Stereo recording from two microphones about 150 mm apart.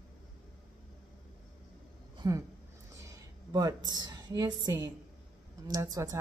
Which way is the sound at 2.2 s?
25° right (ahead or behind).